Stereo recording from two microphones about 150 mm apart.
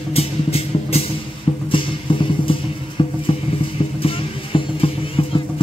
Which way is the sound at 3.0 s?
35° left (ahead or behind).